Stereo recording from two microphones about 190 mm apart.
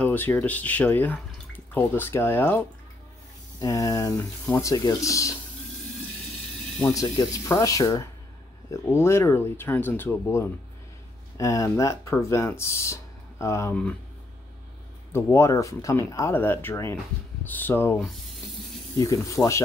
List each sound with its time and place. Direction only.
0.0 s speech: 10° left (ahead or behind)
3.6 s speech: 20° left (ahead or behind)
6.9 s speech: 20° left (ahead or behind)
15.1 s speech: 15° left (ahead or behind)
19.3 s speech: 15° left (ahead or behind)